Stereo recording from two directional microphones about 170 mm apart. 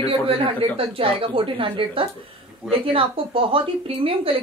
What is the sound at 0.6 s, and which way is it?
Speech, 30° right (ahead or behind).